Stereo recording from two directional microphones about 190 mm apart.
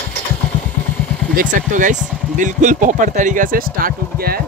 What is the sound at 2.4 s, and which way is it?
Speech, 40° right (ahead or behind).